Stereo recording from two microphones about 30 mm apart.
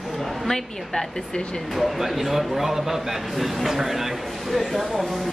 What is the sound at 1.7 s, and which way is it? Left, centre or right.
A man's voice, centre.